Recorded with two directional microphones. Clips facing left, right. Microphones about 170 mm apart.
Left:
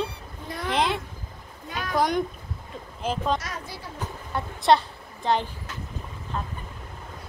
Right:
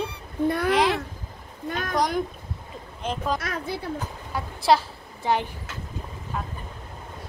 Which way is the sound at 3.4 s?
60° right (ahead or behind).